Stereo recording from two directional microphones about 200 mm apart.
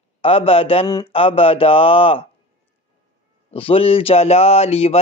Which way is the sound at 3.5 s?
30° left (ahead or behind).